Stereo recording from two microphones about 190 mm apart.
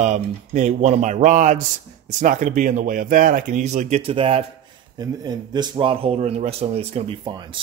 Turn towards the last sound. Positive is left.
turn(degrees=-25)  # may be behind; listen again after turning